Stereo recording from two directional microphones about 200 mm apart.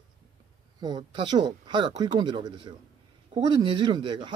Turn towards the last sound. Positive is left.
turn(degrees=-25)  # may be behind; listen again after turning